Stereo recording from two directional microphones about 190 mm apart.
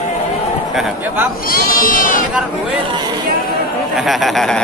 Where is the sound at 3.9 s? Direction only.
Centre (ahead or behind).